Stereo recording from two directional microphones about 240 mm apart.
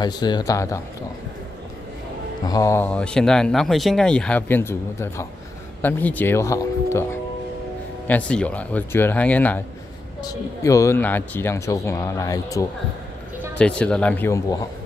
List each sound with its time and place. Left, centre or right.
0.0 s speech: centre
2.4 s speech: centre
8.1 s speech: centre